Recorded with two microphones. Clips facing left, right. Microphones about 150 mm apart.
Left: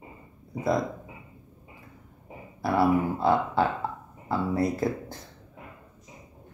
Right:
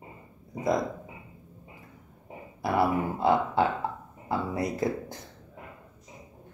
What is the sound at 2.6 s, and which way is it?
Speech, 20° right (ahead or behind).